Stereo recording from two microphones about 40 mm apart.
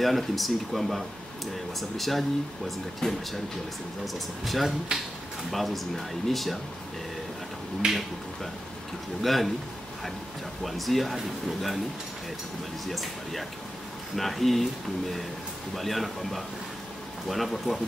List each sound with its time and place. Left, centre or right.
0.0 s speech: centre
3.0 s speech: centre
4.0 s speech: centre
7.8 s speech: right
9.2 s speech: centre
10.6 s speech: centre
12.8 s speech: centre